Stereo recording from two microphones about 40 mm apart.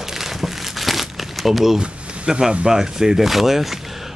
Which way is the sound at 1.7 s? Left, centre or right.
Right.